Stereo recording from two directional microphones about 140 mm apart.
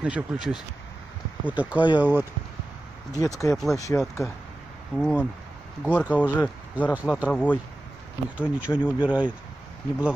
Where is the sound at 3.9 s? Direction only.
15° left (ahead or behind).